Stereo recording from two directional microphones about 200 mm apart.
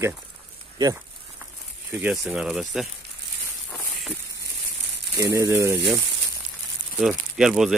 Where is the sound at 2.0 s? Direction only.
5° right (ahead or behind).